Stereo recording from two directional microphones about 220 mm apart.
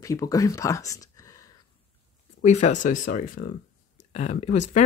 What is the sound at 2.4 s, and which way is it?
Speech, 30° left (ahead or behind).